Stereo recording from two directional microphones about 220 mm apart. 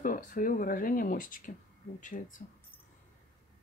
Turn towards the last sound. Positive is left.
turn(degrees=35)  # may be behind; listen again after turning